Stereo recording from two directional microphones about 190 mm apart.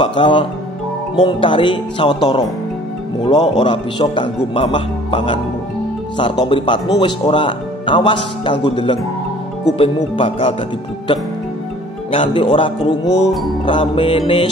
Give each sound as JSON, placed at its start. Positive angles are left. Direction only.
{"t": 0.0, "sound": "a man's voice", "side_deg": 25}
{"t": 12.1, "sound": "a man's voice", "side_deg": 30}